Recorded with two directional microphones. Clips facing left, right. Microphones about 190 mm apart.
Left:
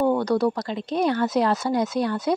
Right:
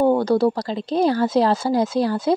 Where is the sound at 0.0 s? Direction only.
30° right (ahead or behind).